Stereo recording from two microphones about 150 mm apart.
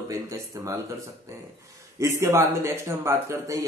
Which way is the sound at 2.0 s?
20° right (ahead or behind).